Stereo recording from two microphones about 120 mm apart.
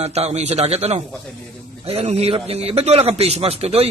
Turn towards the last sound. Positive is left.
turn(degrees=-60)  # may be behind; listen again after turning